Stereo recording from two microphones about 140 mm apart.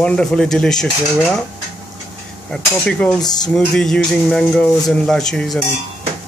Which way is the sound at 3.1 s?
30° left (ahead or behind).